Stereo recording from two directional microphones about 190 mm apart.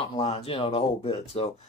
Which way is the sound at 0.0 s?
30° left (ahead or behind).